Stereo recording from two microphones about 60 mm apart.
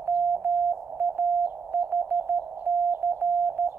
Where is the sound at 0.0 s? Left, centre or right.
Right.